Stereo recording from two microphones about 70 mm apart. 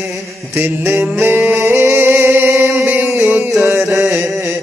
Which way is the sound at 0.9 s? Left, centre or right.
Right.